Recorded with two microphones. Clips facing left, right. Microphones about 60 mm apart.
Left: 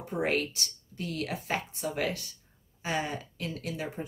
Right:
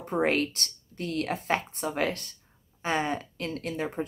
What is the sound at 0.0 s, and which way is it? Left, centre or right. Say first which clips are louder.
Speech: right 4 dB; right.